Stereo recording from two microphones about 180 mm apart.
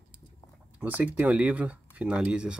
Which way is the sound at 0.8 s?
10° right (ahead or behind).